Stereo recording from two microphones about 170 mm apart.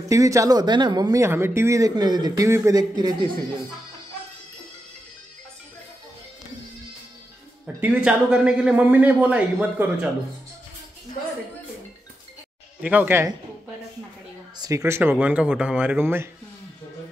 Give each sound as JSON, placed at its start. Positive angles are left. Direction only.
{"t": 0.1, "sound": "speech", "side_deg": -20}
{"t": 7.6, "sound": "a man's voice", "side_deg": -5}
{"t": 12.8, "sound": "a man's voice", "side_deg": -10}
{"t": 14.6, "sound": "a man's voice", "side_deg": -20}